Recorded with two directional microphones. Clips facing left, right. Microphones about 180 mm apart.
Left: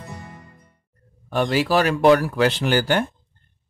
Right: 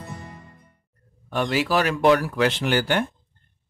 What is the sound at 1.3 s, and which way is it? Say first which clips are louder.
Speech: left 3 dB; 35° left (ahead or behind).